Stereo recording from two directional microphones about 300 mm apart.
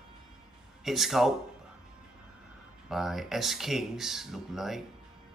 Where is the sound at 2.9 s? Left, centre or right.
Centre.